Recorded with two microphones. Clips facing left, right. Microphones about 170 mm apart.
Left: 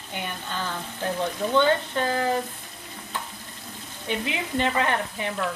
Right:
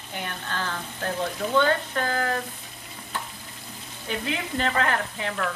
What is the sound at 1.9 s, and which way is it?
Speech, 15° left (ahead or behind).